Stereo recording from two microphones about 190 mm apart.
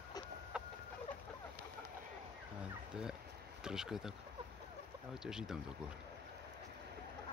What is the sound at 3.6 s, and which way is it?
Speech, 5° right (ahead or behind).